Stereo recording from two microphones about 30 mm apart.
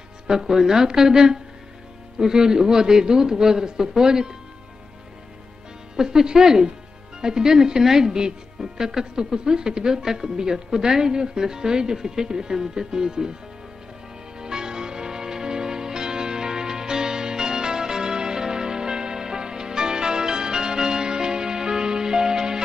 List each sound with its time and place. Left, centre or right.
0.4 s a woman's voice: centre
5.9 s speech: right
14.4 s music: right